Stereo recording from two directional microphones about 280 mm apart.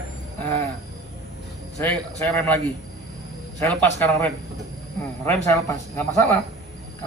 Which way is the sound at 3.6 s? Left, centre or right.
Centre.